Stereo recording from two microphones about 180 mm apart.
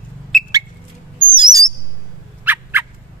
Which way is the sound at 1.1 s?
25° right (ahead or behind).